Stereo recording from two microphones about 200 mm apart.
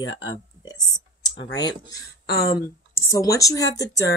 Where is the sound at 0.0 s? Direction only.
70° left (ahead or behind).